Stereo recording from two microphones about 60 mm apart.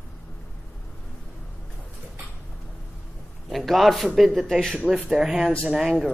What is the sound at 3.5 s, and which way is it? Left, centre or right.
A man's voice, centre.